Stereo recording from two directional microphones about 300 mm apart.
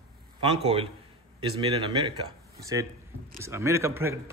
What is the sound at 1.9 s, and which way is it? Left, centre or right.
A man's voice, centre.